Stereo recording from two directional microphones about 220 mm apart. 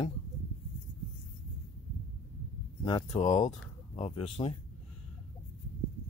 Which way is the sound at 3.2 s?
30° left (ahead or behind).